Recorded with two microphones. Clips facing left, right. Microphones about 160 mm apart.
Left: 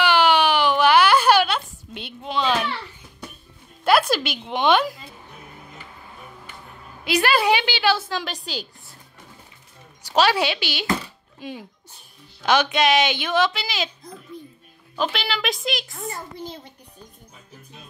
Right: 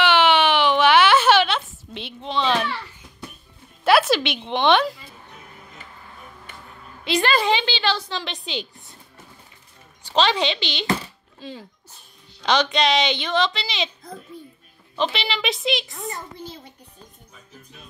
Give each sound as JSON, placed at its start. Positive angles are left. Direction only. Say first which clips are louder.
{"t": 0.0, "sound": "a sound", "louder": "even", "side_deg": 0}
{"t": 3.8, "sound": "a woman's voice", "louder": "right 1 dB", "side_deg": 0}
{"t": 7.1, "sound": "a woman's voice", "louder": "left 1 dB", "side_deg": 5}
{"t": 10.0, "sound": "a woman's voice", "louder": "left 1 dB", "side_deg": 10}
{"t": 15.0, "sound": "a woman's voice", "louder": "right 1 dB", "side_deg": 0}